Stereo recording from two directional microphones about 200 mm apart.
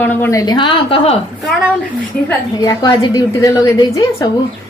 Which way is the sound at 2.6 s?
20° left (ahead or behind).